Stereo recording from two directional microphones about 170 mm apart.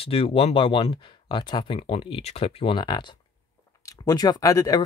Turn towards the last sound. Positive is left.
turn(degrees=20)  # may be behind; listen again after turning